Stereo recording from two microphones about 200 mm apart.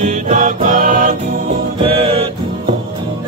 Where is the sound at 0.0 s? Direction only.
35° right (ahead or behind).